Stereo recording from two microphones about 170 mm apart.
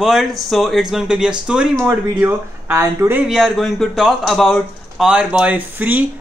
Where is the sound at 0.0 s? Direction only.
Centre (ahead or behind).